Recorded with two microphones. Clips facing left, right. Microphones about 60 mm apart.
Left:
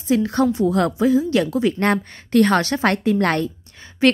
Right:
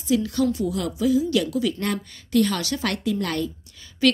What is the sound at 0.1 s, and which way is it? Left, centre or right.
A woman's voice, left.